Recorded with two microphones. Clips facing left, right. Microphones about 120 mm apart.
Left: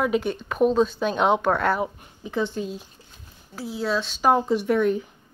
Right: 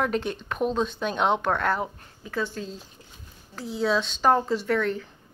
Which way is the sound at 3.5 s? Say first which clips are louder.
Right 1 dB; 5° left (ahead or behind).